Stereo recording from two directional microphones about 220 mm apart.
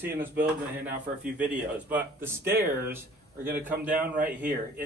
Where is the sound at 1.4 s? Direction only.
5° right (ahead or behind).